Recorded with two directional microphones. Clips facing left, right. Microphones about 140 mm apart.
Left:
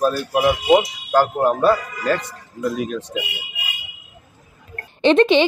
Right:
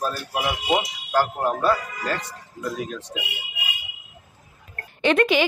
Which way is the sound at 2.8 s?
70° left (ahead or behind).